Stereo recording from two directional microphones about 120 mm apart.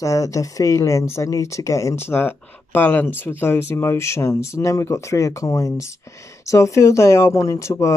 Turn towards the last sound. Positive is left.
turn(degrees=25)  # may be behind; listen again after turning